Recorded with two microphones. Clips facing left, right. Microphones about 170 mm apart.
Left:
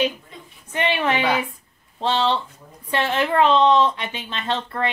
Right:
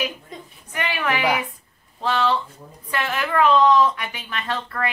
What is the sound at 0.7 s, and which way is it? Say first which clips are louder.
Speech: left 4 dB; 25° left (ahead or behind).